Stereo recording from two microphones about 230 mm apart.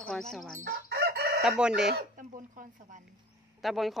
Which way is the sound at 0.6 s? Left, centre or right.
Right.